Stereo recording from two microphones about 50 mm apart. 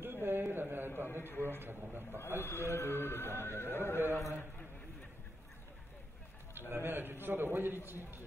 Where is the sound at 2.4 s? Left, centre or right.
Left.